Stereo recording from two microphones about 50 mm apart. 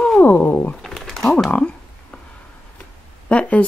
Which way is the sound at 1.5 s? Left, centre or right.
Left.